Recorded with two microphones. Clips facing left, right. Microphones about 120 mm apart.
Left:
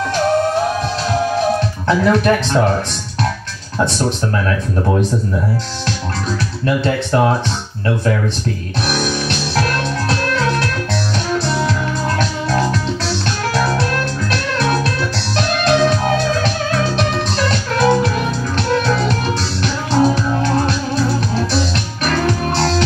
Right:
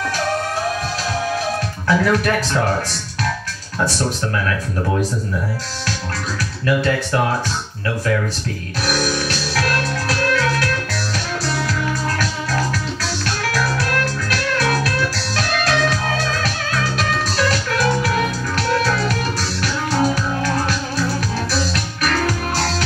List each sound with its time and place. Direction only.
1.9 s speech: 30° left (ahead or behind)
6.6 s speech: 30° left (ahead or behind)
8.8 s music: 25° left (ahead or behind)
12.2 s music: 30° left (ahead or behind)
14.3 s music: 30° left (ahead or behind)
22.0 s music: 30° left (ahead or behind)